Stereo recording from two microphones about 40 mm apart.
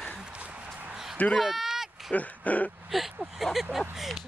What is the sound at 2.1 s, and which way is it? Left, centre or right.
Dog, left.